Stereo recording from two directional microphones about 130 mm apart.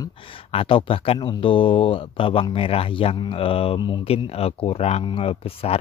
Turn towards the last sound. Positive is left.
turn(degrees=50)  # may be behind; listen again after turning